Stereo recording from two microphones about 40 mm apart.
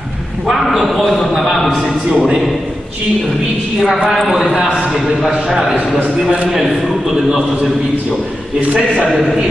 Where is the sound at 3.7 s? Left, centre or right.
Centre.